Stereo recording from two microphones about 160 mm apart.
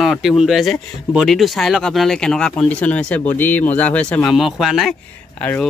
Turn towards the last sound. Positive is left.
turn(degrees=10)  # may be behind; listen again after turning